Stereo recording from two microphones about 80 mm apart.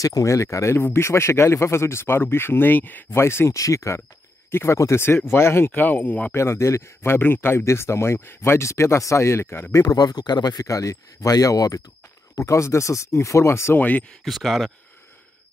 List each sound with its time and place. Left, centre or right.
0.0 s speech: left
5.7 s speech: left
6.3 s speech: left
9.9 s speech: left
10.7 s speech: left
13.7 s speech: centre
14.2 s speech: centre